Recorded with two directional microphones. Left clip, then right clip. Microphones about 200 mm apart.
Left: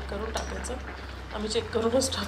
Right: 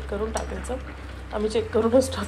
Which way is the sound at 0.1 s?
10° left (ahead or behind).